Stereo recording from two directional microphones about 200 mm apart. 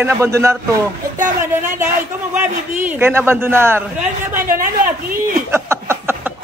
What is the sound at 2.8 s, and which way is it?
A man's voice, 10° right (ahead or behind).